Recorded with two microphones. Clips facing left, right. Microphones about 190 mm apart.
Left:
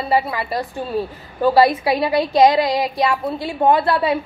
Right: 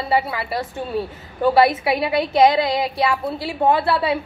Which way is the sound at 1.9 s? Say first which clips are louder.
Left 2 dB; 25° left (ahead or behind).